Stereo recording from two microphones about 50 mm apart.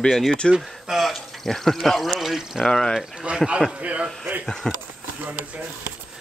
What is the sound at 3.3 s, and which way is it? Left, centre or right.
Speech, right.